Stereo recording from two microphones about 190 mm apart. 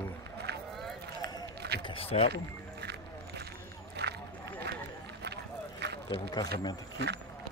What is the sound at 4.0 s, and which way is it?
Run, 60° right (ahead or behind).